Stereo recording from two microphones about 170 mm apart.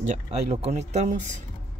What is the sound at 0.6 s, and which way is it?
Speech, 40° right (ahead or behind).